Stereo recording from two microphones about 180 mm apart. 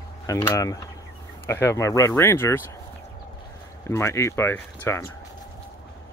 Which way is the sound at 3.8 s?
15° left (ahead or behind).